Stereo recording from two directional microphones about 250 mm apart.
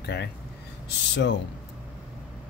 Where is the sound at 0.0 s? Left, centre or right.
Left.